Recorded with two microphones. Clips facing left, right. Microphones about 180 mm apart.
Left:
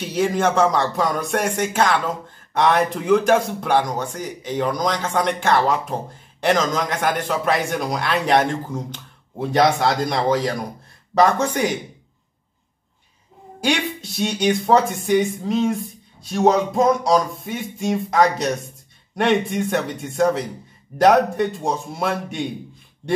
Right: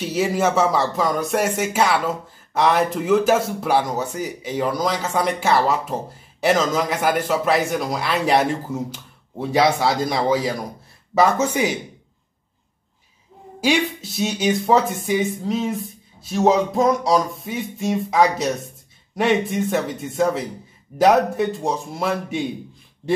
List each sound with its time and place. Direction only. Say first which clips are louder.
0.0 s speech: even; 5° right (ahead or behind)
13.6 s speech: right 2 dB; 5° right (ahead or behind)